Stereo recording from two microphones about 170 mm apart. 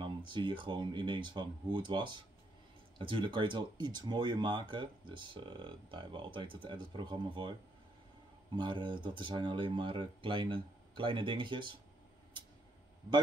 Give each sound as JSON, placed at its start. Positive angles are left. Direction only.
{"t": 0.0, "sound": "speech", "side_deg": -30}
{"t": 8.5, "sound": "speech", "side_deg": -25}